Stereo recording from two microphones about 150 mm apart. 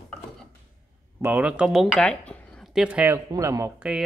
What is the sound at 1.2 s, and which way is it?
Speech, 10° right (ahead or behind).